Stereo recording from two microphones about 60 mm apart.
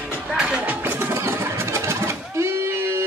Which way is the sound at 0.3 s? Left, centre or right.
Centre.